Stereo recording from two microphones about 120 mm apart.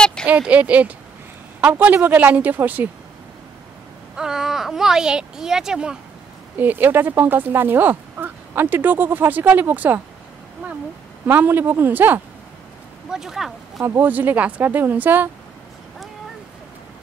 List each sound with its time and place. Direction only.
0.0 s a sound: 5° left (ahead or behind)
0.3 s speech: 10° right (ahead or behind)
4.2 s speech: 5° right (ahead or behind)
11.2 s speech: 15° right (ahead or behind)
13.1 s speech: 5° right (ahead or behind)
13.7 s speech: 20° right (ahead or behind)